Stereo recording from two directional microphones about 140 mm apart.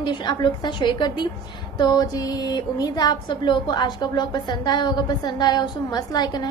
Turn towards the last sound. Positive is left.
turn(degrees=30)  # may be behind; listen again after turning